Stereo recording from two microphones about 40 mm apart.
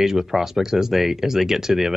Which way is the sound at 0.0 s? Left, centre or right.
Centre.